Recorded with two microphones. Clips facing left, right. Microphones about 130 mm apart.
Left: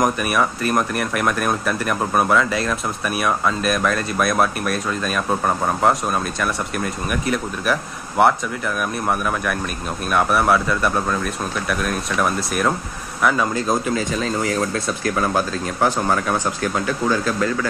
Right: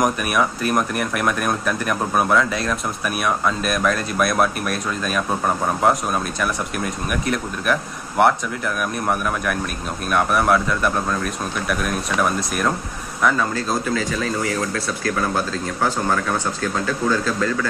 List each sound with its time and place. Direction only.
0.0 s speech: centre (ahead or behind)
13.7 s speech: 20° left (ahead or behind)